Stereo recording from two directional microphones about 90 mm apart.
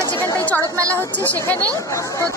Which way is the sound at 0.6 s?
35° right (ahead or behind).